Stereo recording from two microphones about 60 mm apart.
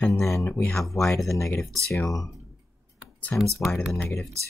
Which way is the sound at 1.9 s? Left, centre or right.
Left.